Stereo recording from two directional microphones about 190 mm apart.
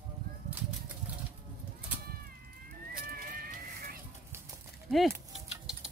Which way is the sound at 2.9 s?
50° right (ahead or behind).